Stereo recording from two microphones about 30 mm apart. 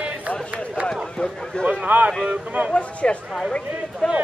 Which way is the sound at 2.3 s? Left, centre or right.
Right.